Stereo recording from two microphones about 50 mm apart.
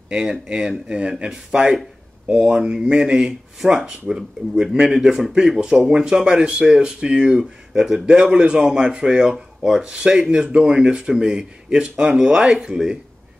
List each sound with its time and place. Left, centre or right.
0.1 s speech: centre